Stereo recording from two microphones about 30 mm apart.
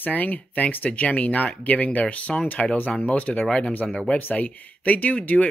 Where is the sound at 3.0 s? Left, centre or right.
Left.